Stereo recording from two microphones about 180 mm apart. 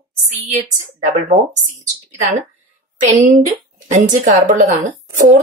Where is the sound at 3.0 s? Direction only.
40° right (ahead or behind).